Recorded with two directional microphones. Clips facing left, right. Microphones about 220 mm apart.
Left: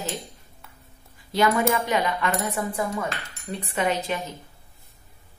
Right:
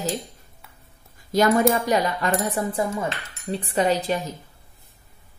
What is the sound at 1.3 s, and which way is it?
Speech, 45° right (ahead or behind).